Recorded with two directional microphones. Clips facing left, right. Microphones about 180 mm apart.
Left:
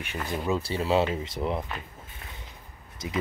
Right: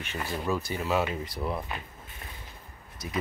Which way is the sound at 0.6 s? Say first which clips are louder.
Left 6 dB; 30° left (ahead or behind).